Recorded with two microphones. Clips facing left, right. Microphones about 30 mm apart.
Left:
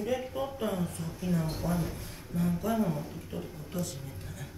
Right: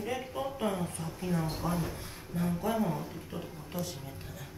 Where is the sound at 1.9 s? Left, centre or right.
Right.